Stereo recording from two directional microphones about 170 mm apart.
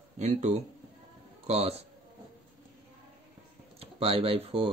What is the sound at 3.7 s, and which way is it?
Speech, 35° right (ahead or behind).